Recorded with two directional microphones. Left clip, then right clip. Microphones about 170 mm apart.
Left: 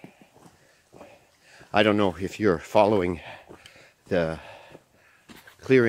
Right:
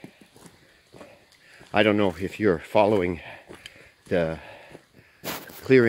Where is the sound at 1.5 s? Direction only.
20° left (ahead or behind).